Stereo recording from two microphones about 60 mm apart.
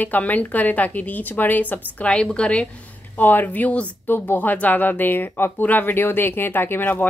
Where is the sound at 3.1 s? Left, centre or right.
Left.